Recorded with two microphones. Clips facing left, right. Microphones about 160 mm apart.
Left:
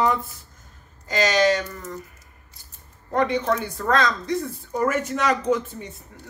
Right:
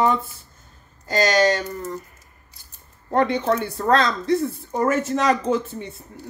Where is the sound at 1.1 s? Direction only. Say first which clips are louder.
Right 1 dB; 35° right (ahead or behind).